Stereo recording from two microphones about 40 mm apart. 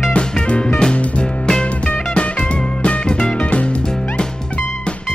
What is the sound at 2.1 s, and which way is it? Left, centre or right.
Music, left.